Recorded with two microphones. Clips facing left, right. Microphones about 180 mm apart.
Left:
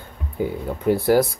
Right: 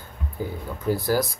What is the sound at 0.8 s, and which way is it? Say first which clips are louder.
Speech: left 6 dB; 25° left (ahead or behind).